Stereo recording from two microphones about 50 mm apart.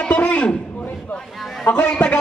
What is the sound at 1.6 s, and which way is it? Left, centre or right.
Speech, left.